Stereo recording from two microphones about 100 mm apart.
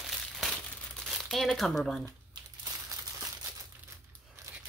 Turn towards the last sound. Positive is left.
turn(degrees=-35)  # may be behind; listen again after turning